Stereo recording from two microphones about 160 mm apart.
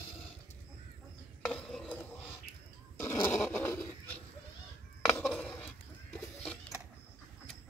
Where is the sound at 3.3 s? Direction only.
10° left (ahead or behind).